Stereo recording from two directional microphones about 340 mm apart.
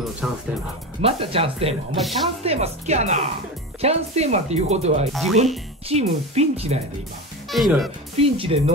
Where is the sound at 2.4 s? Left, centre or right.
Centre.